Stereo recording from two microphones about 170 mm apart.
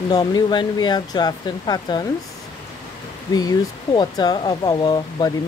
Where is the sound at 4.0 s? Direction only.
25° left (ahead or behind).